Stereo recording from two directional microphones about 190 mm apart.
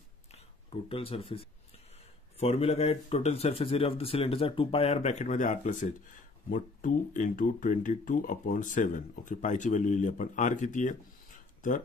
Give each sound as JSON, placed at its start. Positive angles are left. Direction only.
{"t": 0.8, "sound": "speech", "side_deg": 30}